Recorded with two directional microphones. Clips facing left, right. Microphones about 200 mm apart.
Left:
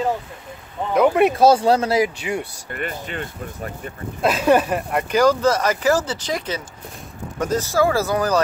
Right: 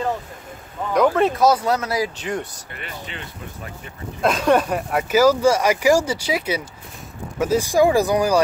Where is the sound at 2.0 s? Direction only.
10° left (ahead or behind).